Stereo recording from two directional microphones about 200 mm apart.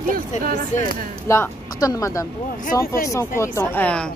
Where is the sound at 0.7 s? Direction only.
40° left (ahead or behind).